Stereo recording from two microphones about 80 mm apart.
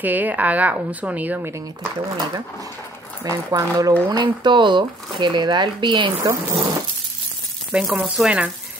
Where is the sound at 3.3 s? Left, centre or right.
Right.